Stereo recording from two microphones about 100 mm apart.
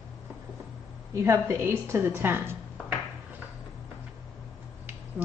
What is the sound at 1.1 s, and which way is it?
A woman's voice, 30° right (ahead or behind).